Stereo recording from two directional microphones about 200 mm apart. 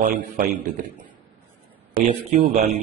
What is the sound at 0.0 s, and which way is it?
Speech, 45° right (ahead or behind).